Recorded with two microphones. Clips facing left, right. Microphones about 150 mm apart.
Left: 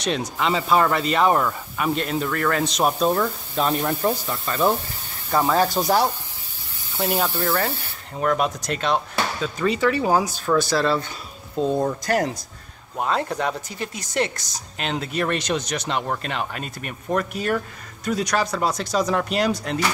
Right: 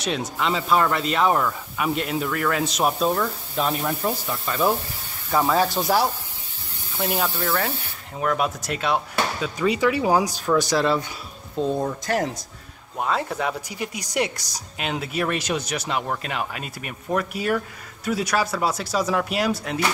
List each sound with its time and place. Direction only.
0.0 s speech: 5° right (ahead or behind)
8.2 s speech: 5° right (ahead or behind)
11.5 s speech: 5° left (ahead or behind)